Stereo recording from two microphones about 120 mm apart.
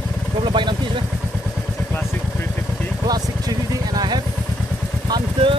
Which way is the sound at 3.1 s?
35° right (ahead or behind).